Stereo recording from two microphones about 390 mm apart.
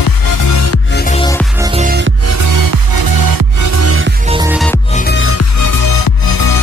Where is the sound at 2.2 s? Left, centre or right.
Right.